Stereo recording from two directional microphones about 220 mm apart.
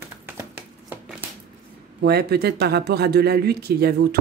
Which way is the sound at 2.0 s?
45° right (ahead or behind).